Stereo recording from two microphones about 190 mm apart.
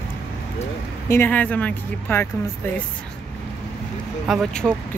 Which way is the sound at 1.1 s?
10° left (ahead or behind).